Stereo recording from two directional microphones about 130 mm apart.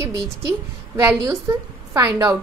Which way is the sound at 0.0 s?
20° right (ahead or behind).